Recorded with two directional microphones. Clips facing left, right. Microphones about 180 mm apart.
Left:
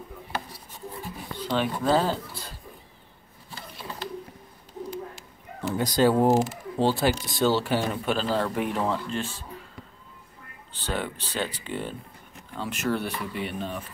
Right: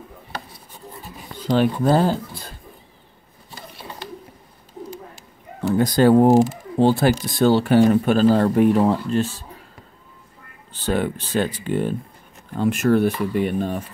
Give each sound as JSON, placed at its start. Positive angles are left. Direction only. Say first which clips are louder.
{"t": 1.5, "sound": "speech", "louder": "right 6 dB", "side_deg": -45}
{"t": 5.8, "sound": "speech", "louder": "right 7 dB", "side_deg": -55}
{"t": 10.7, "sound": "speech", "louder": "right 9 dB", "side_deg": -45}